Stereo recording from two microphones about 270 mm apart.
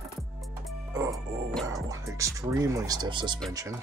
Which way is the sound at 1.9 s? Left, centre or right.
Centre.